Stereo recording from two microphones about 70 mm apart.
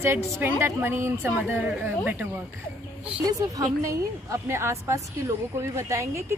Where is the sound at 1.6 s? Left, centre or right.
Right.